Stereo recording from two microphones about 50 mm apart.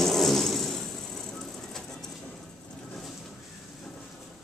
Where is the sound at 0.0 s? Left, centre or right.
Centre.